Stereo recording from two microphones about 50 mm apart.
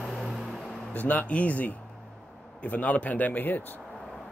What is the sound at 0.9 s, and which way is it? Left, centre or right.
A man's voice, left.